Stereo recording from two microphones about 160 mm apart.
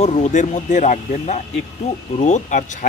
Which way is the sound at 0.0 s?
45° left (ahead or behind).